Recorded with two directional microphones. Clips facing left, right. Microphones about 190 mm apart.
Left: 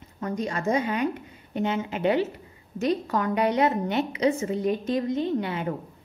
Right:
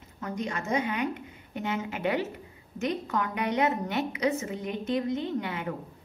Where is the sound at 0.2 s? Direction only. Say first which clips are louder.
Left 5 dB; 35° left (ahead or behind).